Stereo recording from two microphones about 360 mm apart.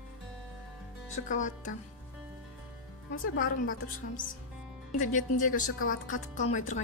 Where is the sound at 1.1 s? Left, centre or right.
Left.